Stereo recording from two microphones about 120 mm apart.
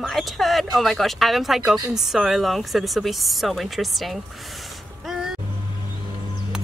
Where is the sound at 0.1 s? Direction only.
Centre (ahead or behind).